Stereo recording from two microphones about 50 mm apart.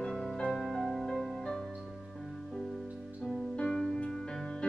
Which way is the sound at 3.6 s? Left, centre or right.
Centre.